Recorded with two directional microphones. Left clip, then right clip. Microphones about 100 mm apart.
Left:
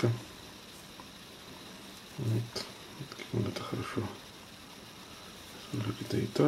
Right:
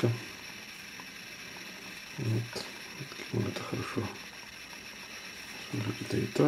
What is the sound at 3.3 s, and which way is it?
Speech, centre (ahead or behind).